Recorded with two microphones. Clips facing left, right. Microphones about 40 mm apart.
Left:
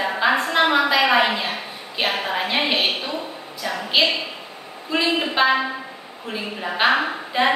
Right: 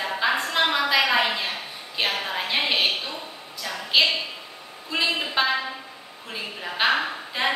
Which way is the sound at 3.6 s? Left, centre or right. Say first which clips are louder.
Left 6 dB; centre.